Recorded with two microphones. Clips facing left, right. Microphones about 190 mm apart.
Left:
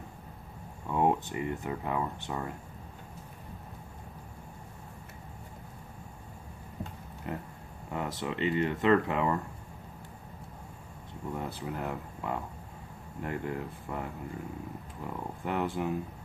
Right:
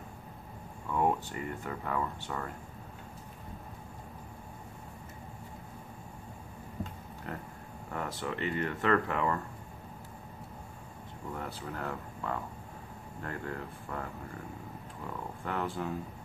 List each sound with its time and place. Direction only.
0.9 s speech: 20° left (ahead or behind)
7.3 s speech: 15° left (ahead or behind)
11.3 s speech: 20° left (ahead or behind)
15.4 s speech: 20° left (ahead or behind)